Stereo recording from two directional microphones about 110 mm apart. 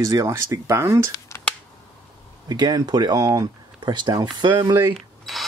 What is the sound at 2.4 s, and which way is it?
Speech, 40° right (ahead or behind).